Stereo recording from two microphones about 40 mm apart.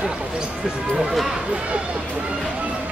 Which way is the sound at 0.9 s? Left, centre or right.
Centre.